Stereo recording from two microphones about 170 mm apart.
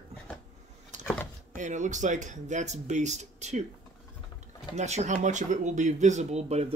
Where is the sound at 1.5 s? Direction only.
45° right (ahead or behind).